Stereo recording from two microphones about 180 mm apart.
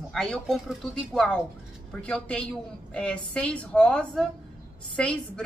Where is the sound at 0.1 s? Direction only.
Centre (ahead or behind).